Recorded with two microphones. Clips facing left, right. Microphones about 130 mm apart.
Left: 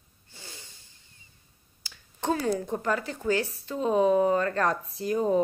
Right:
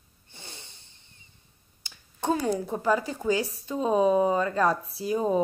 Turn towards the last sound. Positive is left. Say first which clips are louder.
# even
turn(degrees=-10)  # may be behind; listen again after turning